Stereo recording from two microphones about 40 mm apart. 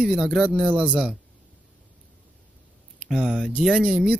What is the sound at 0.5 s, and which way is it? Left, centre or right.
Speech, right.